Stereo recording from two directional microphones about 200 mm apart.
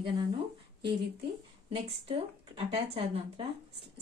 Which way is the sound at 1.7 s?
30° right (ahead or behind).